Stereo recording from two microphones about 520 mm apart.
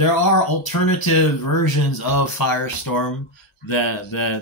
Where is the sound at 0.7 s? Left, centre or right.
Left.